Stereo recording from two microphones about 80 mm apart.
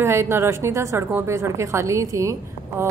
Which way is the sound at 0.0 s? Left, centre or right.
Right.